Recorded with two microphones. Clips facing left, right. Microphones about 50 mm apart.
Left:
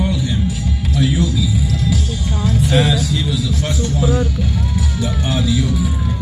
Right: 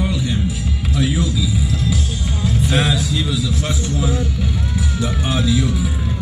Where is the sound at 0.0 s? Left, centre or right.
Centre.